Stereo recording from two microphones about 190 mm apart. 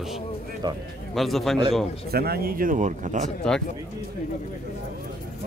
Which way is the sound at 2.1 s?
55° right (ahead or behind).